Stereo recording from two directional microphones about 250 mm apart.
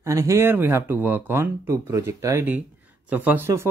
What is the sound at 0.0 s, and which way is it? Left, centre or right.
Speech, centre.